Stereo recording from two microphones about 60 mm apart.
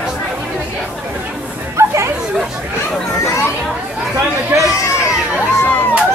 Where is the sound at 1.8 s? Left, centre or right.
Right.